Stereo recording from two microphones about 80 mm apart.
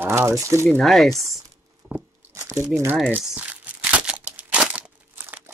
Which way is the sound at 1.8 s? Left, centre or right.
Centre.